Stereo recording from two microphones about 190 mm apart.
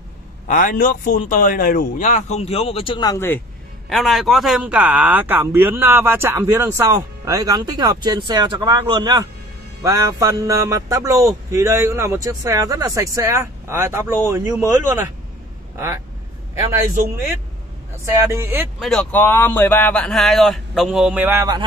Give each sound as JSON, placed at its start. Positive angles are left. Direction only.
{"t": 0.5, "sound": "a man's voice", "side_deg": 45}
{"t": 3.9, "sound": "speech", "side_deg": 0}
{"t": 18.0, "sound": "speech", "side_deg": -15}
{"t": 18.8, "sound": "a man's voice", "side_deg": 0}